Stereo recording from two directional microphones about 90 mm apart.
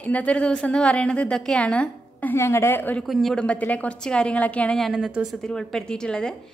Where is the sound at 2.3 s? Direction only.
30° left (ahead or behind).